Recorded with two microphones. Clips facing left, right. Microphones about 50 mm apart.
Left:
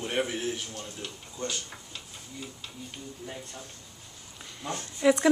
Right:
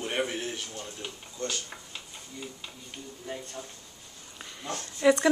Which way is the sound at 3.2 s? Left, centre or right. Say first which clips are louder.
Right 5 dB; centre.